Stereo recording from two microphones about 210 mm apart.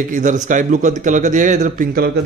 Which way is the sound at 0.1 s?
40° right (ahead or behind).